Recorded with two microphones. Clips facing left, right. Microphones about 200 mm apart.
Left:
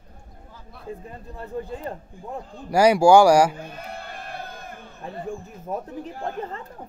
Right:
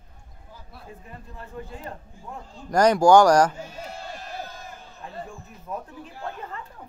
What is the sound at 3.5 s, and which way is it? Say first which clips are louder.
Sheep: left 1 dB; 55° left (ahead or behind).